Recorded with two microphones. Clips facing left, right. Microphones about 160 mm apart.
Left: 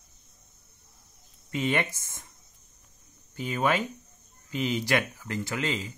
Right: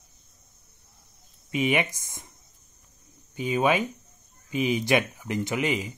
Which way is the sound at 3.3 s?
15° right (ahead or behind).